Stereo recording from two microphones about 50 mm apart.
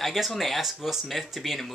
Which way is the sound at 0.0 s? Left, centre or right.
Centre.